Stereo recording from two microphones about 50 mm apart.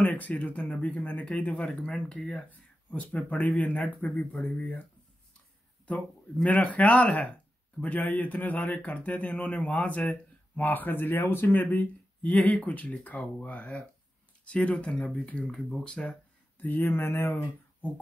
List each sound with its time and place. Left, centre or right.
0.0 s speech: left
1.6 s speech: centre
2.5 s a sound: left
3.3 s speech: left
6.5 s speech: left
15.3 s speech: centre
16.5 s speech: left
16.8 s speech: left